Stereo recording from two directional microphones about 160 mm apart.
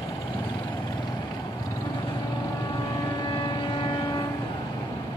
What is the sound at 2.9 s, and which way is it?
Vehicle, 25° left (ahead or behind).